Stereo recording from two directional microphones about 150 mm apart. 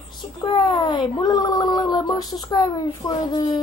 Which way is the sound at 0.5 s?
30° left (ahead or behind).